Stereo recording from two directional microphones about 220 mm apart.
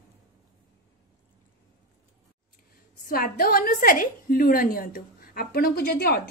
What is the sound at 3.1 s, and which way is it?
A woman's voice, 40° left (ahead or behind).